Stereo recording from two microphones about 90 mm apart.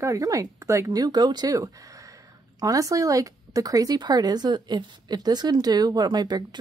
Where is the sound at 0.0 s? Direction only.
40° right (ahead or behind).